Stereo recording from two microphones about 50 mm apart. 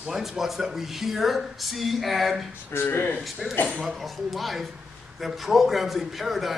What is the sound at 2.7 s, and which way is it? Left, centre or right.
Speech, left.